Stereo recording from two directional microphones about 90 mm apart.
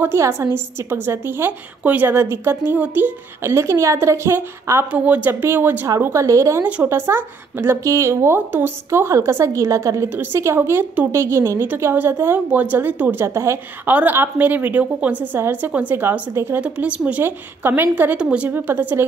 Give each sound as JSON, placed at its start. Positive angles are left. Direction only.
{"t": 0.0, "sound": "a woman's voice", "side_deg": -30}
{"t": 4.9, "sound": "a woman's voice", "side_deg": -15}
{"t": 10.0, "sound": "speech", "side_deg": -25}
{"t": 11.6, "sound": "speech", "side_deg": -20}
{"t": 15.3, "sound": "speech", "side_deg": -25}